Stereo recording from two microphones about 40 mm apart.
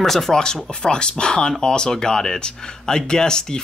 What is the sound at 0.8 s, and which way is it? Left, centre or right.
Speech, left.